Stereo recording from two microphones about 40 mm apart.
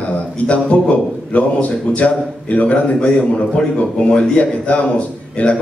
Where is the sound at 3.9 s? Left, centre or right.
Left.